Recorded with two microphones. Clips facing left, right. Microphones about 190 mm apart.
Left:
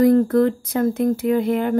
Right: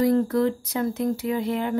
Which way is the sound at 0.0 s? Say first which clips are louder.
Left 6 dB; 55° left (ahead or behind).